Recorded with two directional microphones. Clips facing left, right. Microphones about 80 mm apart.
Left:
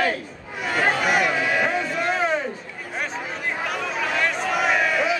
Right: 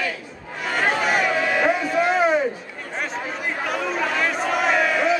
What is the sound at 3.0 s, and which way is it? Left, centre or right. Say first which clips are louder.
Crowd: right 1 dB; centre.